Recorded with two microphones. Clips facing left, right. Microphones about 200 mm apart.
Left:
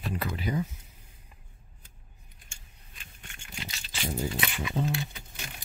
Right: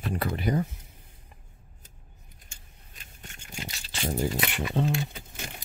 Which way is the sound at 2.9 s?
40° right (ahead or behind).